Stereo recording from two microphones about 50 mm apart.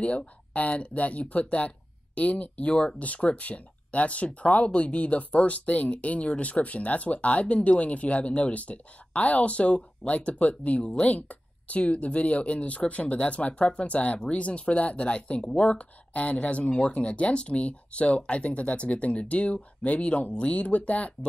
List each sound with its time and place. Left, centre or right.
0.0 s speech: left